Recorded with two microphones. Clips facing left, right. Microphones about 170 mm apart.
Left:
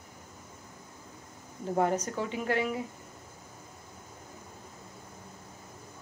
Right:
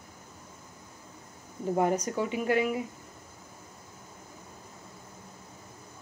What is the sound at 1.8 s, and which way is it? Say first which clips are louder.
Speech: right 1 dB; 15° right (ahead or behind).